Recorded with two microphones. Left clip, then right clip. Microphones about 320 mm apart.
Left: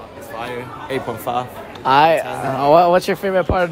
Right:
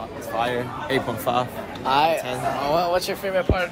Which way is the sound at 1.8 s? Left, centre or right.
Left.